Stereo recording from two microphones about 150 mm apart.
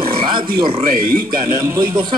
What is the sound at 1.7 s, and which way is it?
Speech, 25° right (ahead or behind).